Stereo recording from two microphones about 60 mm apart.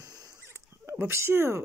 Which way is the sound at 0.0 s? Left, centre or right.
Right.